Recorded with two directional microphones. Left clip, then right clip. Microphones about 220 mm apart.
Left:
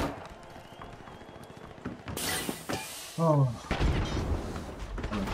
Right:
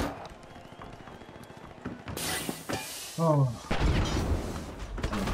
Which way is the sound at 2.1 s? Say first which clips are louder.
Left 1 dB; 5° left (ahead or behind).